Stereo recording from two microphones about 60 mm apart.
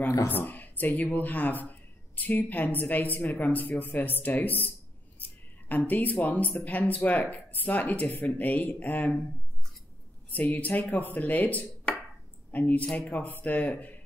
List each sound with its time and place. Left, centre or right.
0.3 s speech: left
10.3 s speech: left